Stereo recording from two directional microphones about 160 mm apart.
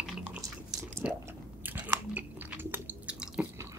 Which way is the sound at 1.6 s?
10° right (ahead or behind).